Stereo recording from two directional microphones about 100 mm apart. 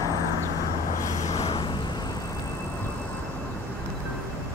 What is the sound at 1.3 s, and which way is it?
Vehicle, 90° left.